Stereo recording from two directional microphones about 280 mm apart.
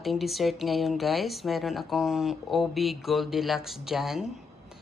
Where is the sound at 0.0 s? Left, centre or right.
Centre.